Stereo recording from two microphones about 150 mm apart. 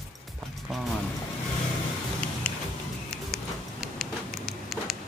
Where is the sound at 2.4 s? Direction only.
10° left (ahead or behind).